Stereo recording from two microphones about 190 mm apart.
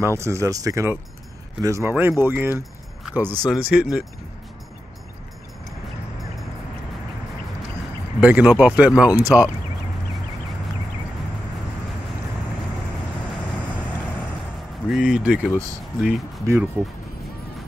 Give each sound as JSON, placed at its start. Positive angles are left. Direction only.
{"t": 0.0, "sound": "speech", "side_deg": -15}
{"t": 8.2, "sound": "speech", "side_deg": -10}
{"t": 14.9, "sound": "speech", "side_deg": -5}